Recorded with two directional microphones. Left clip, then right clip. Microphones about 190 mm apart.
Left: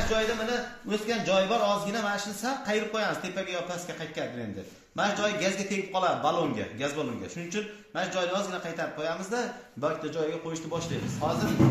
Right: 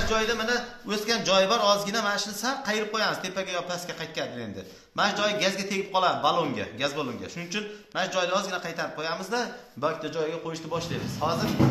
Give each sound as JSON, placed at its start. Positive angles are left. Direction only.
{"t": 0.1, "sound": "a man's voice", "side_deg": 10}
{"t": 11.2, "sound": "a man's voice", "side_deg": 10}